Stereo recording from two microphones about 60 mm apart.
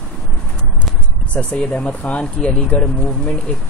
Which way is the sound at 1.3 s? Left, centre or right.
Left.